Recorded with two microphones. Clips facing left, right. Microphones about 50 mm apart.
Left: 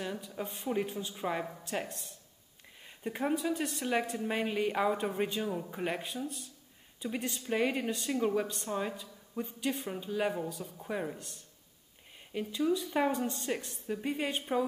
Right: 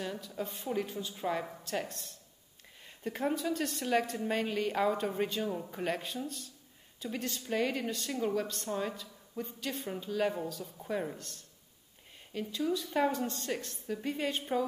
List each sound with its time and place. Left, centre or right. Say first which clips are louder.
0.4 s a man's voice: left 1 dB; left
12.3 s speech: left 2 dB; centre